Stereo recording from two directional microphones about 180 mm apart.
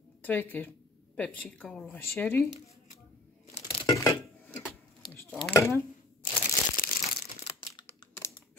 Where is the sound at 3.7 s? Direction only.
25° left (ahead or behind).